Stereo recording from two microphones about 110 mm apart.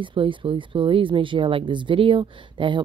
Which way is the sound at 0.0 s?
50° right (ahead or behind).